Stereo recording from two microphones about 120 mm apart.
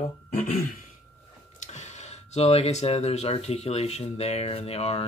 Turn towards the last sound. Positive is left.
turn(degrees=55)  # may be behind; listen again after turning